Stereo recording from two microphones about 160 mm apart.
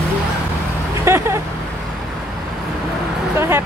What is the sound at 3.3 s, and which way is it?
Speech, 15° right (ahead or behind).